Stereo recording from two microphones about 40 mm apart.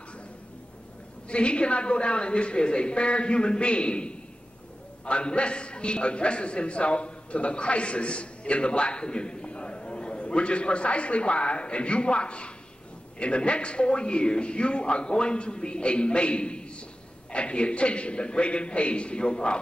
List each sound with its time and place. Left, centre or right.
1.3 s a man's voice: left